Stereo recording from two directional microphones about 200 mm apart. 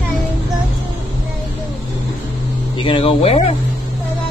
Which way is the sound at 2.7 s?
25° left (ahead or behind).